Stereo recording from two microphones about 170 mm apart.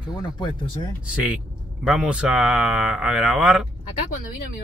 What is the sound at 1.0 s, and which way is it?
Speech, 10° right (ahead or behind).